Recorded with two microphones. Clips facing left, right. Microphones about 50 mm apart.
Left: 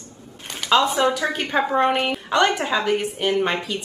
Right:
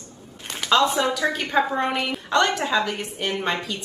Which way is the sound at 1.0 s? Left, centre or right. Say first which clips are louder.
Left 2 dB; left.